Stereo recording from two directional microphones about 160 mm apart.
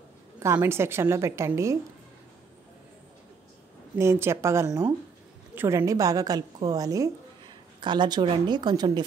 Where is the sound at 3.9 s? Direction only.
15° right (ahead or behind).